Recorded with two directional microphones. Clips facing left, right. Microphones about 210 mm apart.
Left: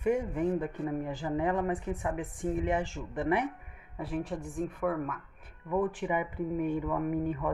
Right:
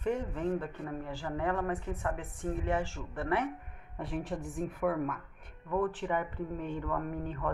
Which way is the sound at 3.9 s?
Centre (ahead or behind).